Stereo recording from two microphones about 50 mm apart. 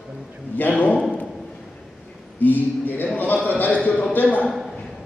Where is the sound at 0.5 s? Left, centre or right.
Left.